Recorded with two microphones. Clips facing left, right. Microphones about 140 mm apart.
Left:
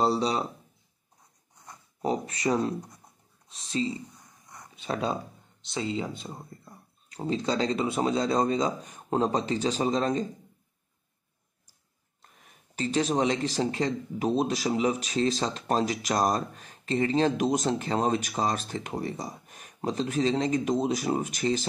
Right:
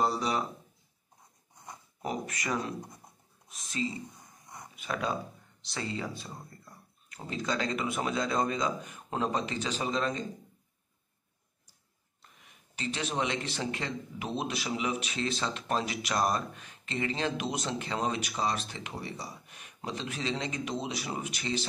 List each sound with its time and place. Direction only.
0.0 s a man's voice: 30° left (ahead or behind)
2.0 s a man's voice: 30° left (ahead or behind)
12.2 s speech: 40° left (ahead or behind)